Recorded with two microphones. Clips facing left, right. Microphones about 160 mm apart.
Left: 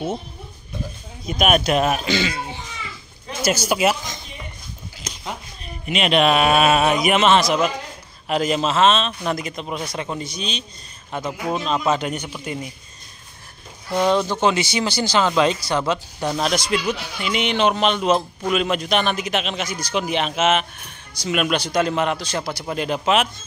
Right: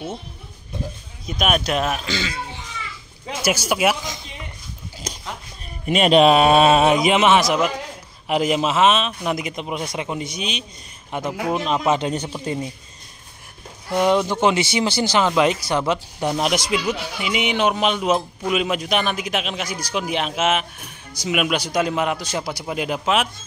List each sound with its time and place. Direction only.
1.2 s speech: centre (ahead or behind)
3.4 s speech: 5° right (ahead or behind)
5.9 s speech: 40° right (ahead or behind)
6.1 s speech: 30° right (ahead or behind)
12.1 s speech: 30° right (ahead or behind)
13.9 s speech: 15° right (ahead or behind)